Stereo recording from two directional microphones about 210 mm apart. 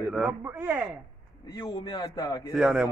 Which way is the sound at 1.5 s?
20° left (ahead or behind).